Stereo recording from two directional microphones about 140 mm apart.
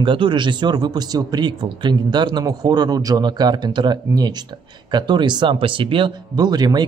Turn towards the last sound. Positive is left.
turn(degrees=-30)  # may be behind; listen again after turning